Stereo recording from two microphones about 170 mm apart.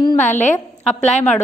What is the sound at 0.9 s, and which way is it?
Speech, 40° left (ahead or behind).